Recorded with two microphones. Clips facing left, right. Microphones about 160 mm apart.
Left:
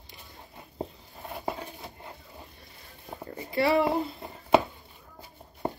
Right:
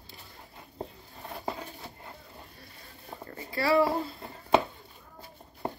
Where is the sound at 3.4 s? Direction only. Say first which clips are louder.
Left 1 dB; 20° left (ahead or behind).